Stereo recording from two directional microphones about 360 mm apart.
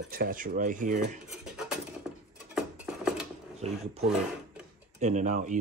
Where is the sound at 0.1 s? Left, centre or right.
Right.